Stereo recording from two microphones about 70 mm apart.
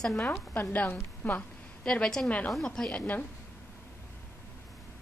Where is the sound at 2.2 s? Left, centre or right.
Left.